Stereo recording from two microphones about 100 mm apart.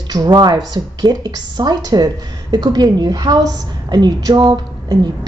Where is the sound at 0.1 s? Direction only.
45° right (ahead or behind).